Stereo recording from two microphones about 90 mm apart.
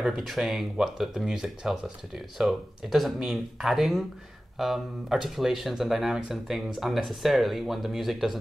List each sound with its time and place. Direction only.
0.2 s speech: centre (ahead or behind)